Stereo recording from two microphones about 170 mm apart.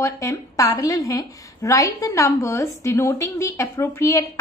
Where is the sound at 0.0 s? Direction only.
15° left (ahead or behind).